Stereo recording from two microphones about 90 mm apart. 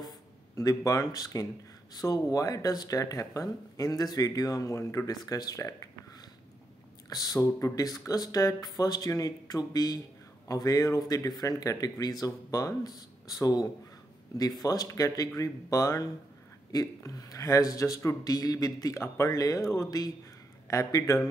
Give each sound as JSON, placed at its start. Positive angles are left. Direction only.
{"t": 0.6, "sound": "speech", "side_deg": 40}
{"t": 5.1, "sound": "speech", "side_deg": 45}
{"t": 7.1, "sound": "speech", "side_deg": 45}